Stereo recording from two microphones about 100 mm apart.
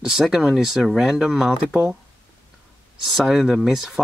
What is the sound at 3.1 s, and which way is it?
Speech, 5° right (ahead or behind).